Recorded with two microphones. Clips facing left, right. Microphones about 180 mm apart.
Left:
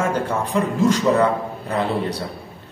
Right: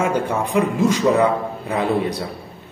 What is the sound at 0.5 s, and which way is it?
A man's voice, 10° right (ahead or behind).